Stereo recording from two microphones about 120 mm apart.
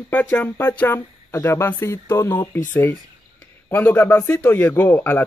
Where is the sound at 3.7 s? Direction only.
15° left (ahead or behind).